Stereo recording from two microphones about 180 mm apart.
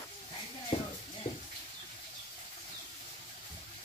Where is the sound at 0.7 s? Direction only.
30° left (ahead or behind).